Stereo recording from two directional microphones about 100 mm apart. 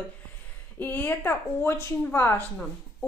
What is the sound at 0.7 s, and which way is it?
Speech, 20° left (ahead or behind).